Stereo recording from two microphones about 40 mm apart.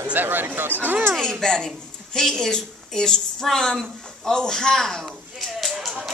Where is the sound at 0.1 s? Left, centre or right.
Right.